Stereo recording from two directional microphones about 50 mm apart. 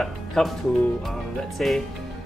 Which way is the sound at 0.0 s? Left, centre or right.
Centre.